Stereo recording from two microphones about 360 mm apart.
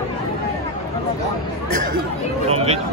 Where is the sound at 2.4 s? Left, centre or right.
Centre.